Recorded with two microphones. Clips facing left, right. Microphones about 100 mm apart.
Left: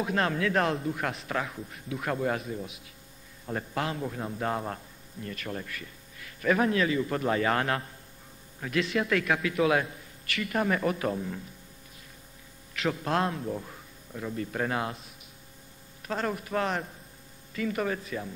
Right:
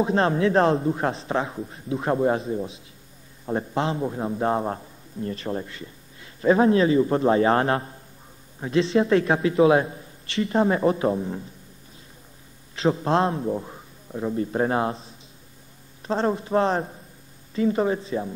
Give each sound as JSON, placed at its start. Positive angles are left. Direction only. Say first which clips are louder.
{"t": 0.0, "sound": "a man's voice", "louder": "right 7 dB", "side_deg": -30}
{"t": 12.7, "sound": "a man's voice", "louder": "right 7 dB", "side_deg": -30}